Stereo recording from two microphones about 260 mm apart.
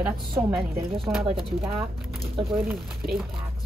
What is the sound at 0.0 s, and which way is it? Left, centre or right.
A woman's voice, centre.